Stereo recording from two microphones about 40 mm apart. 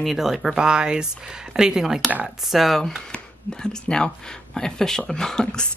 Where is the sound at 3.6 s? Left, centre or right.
Centre.